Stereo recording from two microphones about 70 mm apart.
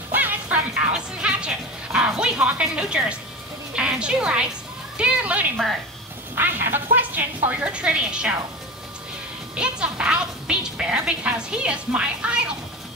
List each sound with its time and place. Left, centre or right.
0.1 s music: right
0.9 s a sound: centre
3.7 s a woman's voice: centre
6.3 s speech: right; by 8.4 s centre
9.6 s a woman's voice: centre